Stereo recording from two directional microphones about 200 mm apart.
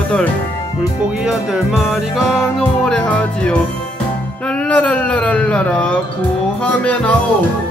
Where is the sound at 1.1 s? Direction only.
5° right (ahead or behind).